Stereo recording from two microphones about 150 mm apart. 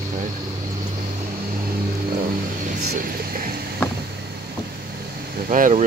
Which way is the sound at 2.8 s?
85° right.